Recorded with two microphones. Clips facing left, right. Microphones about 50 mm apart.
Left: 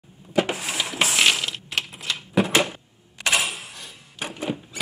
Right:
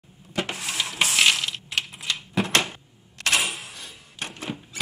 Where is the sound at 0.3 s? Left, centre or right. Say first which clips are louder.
Left 6 dB; centre.